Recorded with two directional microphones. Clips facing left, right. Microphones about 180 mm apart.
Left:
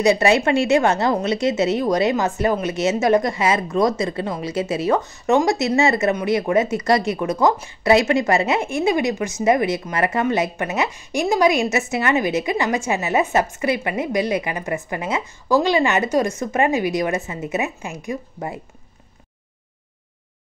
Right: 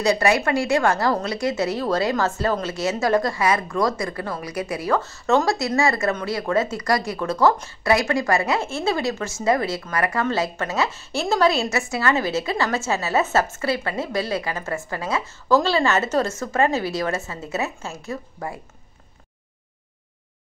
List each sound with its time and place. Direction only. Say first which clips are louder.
0.0 s a woman's voice: left 3 dB; 25° left (ahead or behind)